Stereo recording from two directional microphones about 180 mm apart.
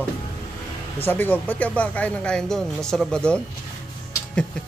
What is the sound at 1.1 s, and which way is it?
Speech, 10° left (ahead or behind).